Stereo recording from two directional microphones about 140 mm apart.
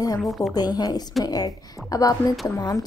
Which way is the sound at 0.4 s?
30° left (ahead or behind).